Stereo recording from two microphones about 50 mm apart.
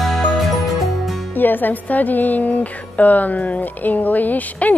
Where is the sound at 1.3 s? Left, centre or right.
Left.